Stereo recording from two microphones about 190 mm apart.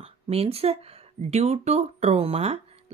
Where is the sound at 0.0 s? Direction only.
30° right (ahead or behind).